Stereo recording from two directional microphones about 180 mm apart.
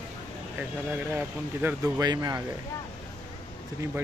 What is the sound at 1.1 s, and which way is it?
Speech, 10° right (ahead or behind).